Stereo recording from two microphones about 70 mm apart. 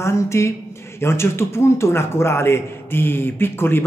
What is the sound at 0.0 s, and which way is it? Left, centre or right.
A man's voice, left.